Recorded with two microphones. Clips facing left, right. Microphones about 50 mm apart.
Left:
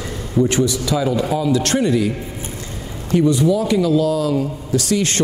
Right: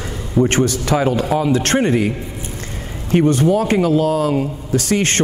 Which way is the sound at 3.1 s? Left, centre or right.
Right.